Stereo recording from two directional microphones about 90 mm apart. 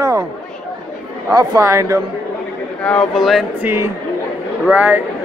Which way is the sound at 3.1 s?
5° right (ahead or behind).